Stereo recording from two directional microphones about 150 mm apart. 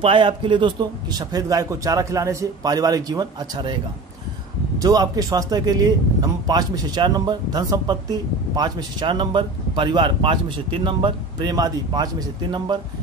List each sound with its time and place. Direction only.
0.0 s speech: 35° right (ahead or behind)
4.7 s speech: 25° right (ahead or behind)